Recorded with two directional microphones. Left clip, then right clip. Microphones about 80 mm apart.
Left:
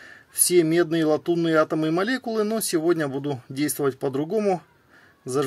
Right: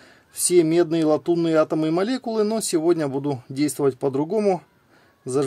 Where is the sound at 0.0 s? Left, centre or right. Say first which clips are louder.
Even; right.